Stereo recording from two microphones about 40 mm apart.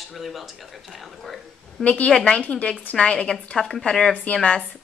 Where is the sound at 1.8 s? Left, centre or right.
Left.